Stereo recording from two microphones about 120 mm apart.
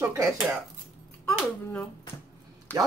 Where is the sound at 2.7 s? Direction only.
15° left (ahead or behind).